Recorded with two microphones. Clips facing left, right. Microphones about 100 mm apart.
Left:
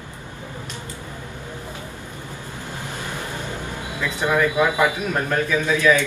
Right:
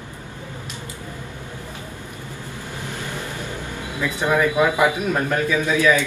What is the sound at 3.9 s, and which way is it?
A man's voice, 15° right (ahead or behind).